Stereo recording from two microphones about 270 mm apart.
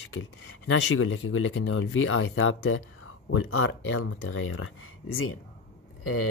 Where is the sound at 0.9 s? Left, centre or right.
Left.